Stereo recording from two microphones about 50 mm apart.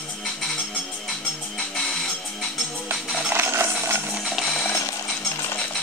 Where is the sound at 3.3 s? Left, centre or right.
Right.